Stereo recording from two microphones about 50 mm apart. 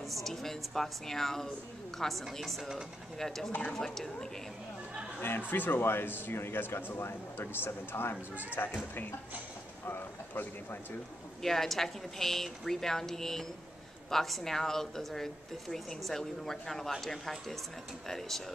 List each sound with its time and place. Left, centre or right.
0.0 s a woman's voice: centre
5.5 s speech: left
9.8 s a sound: left
11.4 s speech: centre